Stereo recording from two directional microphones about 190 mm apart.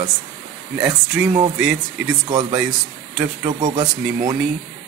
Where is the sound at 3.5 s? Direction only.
20° right (ahead or behind).